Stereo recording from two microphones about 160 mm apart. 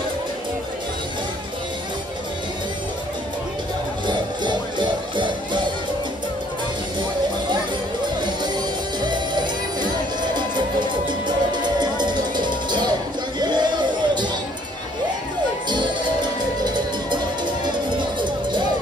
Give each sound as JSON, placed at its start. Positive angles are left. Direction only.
{"t": 4.0, "sound": "music", "side_deg": -30}
{"t": 9.0, "sound": "music", "side_deg": -25}